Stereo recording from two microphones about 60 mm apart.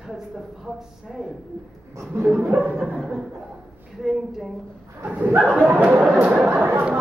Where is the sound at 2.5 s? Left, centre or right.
Right.